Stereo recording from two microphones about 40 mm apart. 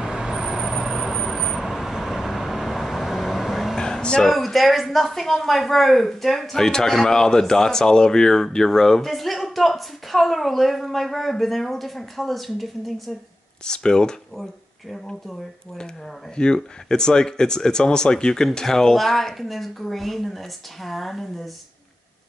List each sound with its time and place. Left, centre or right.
0.0 s vehicle: centre
3.7 s a sound: centre
4.2 s speech: centre
13.7 s speech: centre
14.3 s speech: centre
16.4 s speech: centre